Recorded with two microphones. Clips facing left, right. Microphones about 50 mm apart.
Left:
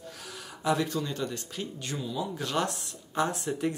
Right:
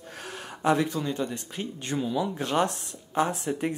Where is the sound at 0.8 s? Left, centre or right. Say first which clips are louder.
Right 3 dB; right.